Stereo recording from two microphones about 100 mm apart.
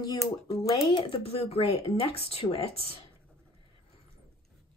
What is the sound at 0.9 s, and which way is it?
Speech, 70° left (ahead or behind).